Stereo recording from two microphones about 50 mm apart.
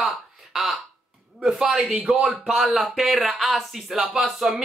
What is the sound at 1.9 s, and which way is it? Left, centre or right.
Speech, centre.